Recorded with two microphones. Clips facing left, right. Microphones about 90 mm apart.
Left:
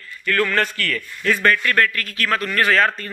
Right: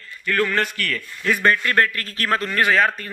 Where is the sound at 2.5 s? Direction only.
15° right (ahead or behind).